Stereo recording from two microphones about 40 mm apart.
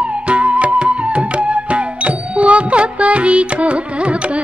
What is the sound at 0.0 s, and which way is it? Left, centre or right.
Music, right.